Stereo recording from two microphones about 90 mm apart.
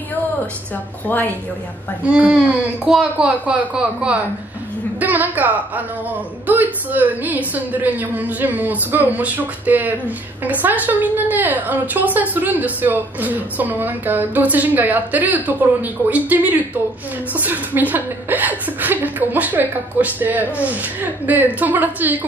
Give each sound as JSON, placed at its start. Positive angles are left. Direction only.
{"t": 1.0, "sound": "speech", "side_deg": 20}
{"t": 2.0, "sound": "a woman's voice", "side_deg": -10}